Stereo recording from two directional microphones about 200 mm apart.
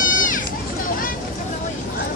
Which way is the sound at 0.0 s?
40° left (ahead or behind).